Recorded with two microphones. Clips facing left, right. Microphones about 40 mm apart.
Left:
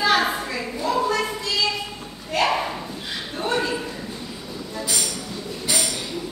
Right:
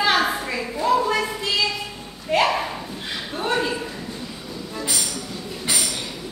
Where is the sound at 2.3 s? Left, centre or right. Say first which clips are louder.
Right 2 dB; right.